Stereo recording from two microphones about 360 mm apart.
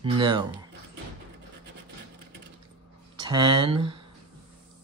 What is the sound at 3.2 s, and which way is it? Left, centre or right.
Speech, centre.